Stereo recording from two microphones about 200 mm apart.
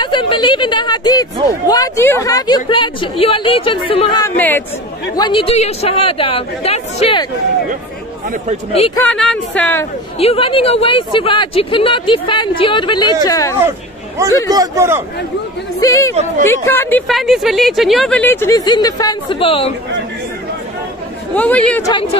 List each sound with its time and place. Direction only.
0.0 s speech: 25° left (ahead or behind)
4.4 s speech: 10° left (ahead or behind)
5.1 s speech: 25° left (ahead or behind)
8.9 s a woman's voice: 5° left (ahead or behind)
10.1 s speech: 30° left (ahead or behind)
13.6 s hubbub: 15° right (ahead or behind)
14.5 s a man's voice: 15° right (ahead or behind)
15.8 s speech: 15° left (ahead or behind)
17.1 s speech: centre (ahead or behind); by 19.7 s 30° left (ahead or behind)
21.4 s speech: 5° left (ahead or behind)